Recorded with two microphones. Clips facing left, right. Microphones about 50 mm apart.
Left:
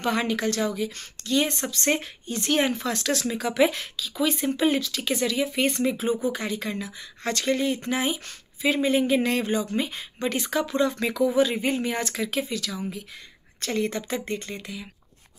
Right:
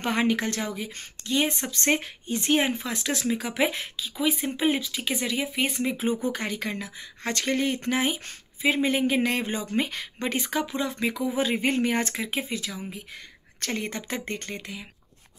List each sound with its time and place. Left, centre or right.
0.0 s speech: right
4.3 s speech: centre
5.5 s speech: centre
5.9 s speech: right
10.7 s speech: centre
11.3 s speech: right